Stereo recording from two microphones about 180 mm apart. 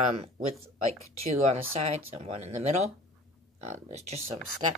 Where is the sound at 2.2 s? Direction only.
35° right (ahead or behind).